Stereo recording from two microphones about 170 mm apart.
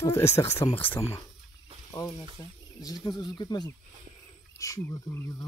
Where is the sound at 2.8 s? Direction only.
25° left (ahead or behind).